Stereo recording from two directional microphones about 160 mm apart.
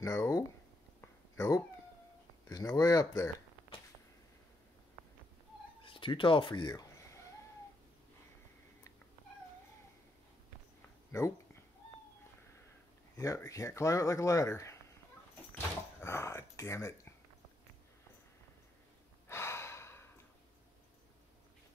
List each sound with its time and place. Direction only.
0.0 s speech: 20° left (ahead or behind)
1.0 s a sound: 15° left (ahead or behind)
2.4 s speech: 25° left (ahead or behind)
5.9 s speech: 30° left (ahead or behind)
11.1 s speech: 15° left (ahead or behind)
13.1 s speech: 20° left (ahead or behind)
15.5 s door: 15° left (ahead or behind)
19.2 s gasp: 15° left (ahead or behind)